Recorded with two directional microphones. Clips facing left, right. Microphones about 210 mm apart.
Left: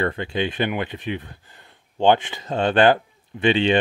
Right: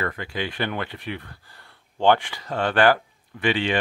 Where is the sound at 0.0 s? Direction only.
25° left (ahead or behind).